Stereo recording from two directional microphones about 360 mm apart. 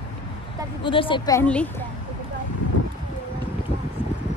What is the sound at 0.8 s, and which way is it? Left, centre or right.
Speech, centre.